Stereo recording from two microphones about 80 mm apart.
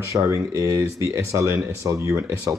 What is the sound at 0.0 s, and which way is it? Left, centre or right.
Speech, right.